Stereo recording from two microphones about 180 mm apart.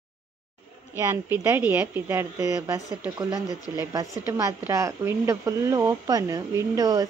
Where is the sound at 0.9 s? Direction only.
15° right (ahead or behind).